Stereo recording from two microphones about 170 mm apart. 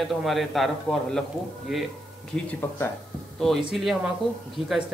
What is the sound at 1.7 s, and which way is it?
Speech, centre (ahead or behind).